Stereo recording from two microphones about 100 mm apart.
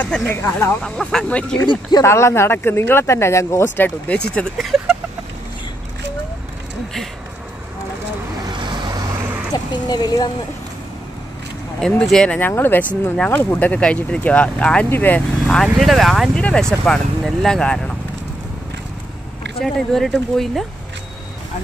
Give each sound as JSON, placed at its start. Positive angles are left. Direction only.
{"t": 0.0, "sound": "speech", "side_deg": 15}
{"t": 0.8, "sound": "speech", "side_deg": 10}
{"t": 1.7, "sound": "speech", "side_deg": 45}
{"t": 2.0, "sound": "speech", "side_deg": 25}
{"t": 4.6, "sound": "vehicle", "side_deg": -5}
{"t": 9.5, "sound": "a sound", "side_deg": 45}
{"t": 12.0, "sound": "speech", "side_deg": 5}
{"t": 12.4, "sound": "speech", "side_deg": 20}
{"t": 15.6, "sound": "speech", "side_deg": 0}
{"t": 19.6, "sound": "speech", "side_deg": 5}